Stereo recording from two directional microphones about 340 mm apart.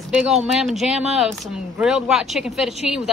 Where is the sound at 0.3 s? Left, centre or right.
Centre.